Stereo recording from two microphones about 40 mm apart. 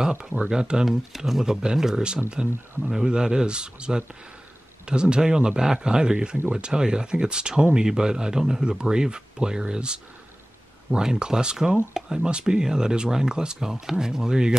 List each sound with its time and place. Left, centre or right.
0.0 s speech: centre
0.8 s speech: centre
1.4 s speech: centre
2.4 s speech: centre